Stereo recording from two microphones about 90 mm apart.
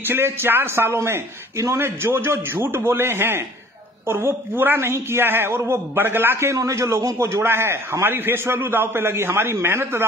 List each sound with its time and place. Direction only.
0.0 s a woman's voice: 25° right (ahead or behind)